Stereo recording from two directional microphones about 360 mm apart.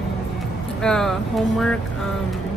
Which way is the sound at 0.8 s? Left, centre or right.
Centre.